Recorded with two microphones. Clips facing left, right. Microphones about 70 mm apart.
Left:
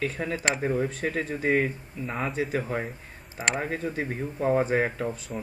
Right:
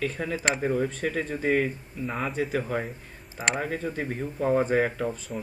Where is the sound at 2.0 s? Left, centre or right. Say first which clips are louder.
Even; centre.